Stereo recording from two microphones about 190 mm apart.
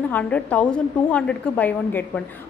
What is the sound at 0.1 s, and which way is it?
A woman's voice, 5° left (ahead or behind).